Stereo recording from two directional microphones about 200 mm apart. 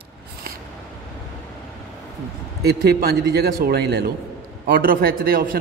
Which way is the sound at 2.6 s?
55° right (ahead or behind).